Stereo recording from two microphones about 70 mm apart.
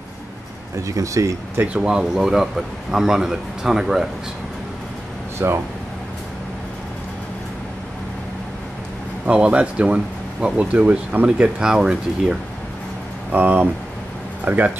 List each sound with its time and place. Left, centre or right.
0.7 s speech: right
1.7 s a man's voice: centre
5.4 s speech: right
9.2 s a man's voice: centre
13.3 s speech: right